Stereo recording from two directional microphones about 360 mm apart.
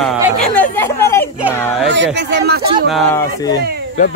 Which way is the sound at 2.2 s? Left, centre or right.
Right.